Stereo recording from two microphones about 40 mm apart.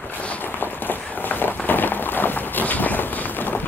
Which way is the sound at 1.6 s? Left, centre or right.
Left.